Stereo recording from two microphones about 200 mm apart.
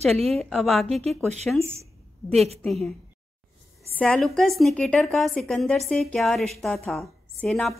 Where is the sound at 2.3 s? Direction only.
30° right (ahead or behind).